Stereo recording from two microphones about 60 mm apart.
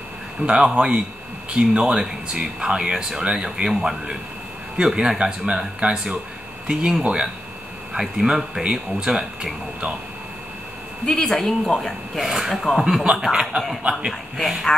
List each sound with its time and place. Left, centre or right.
0.5 s speech: centre
11.1 s speech: centre
14.3 s speech: centre